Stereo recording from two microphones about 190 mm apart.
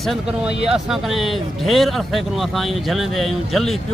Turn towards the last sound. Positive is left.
turn(degrees=0)  # may be behind; listen again after turning